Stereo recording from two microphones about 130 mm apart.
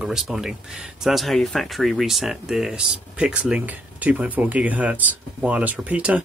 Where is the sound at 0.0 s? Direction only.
5° right (ahead or behind).